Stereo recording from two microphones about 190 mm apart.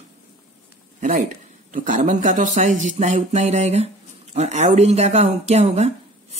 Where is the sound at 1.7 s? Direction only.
40° right (ahead or behind).